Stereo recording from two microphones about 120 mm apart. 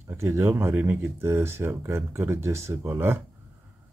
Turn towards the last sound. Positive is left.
turn(degrees=-20)  # may be behind; listen again after turning